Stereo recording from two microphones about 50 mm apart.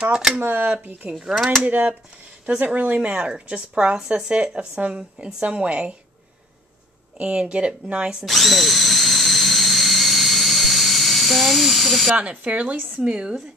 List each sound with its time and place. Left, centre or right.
0.0 s speech: centre
0.4 s speech: right
1.3 s speech: centre
1.6 s a woman's voice: right
7.2 s a woman's voice: right
8.3 s drill: centre
12.2 s a woman's voice: right